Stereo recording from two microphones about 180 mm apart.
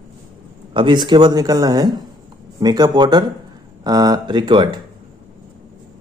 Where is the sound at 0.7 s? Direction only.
25° right (ahead or behind).